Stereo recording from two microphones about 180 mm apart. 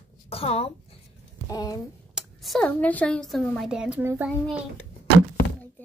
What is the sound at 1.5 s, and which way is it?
Speech, 20° left (ahead or behind).